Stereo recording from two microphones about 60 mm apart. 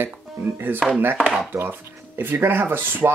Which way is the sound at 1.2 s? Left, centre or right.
Centre.